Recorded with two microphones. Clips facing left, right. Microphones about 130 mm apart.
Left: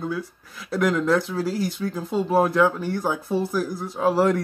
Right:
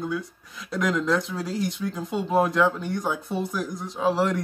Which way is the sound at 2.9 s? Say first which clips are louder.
Left 3 dB; 30° left (ahead or behind).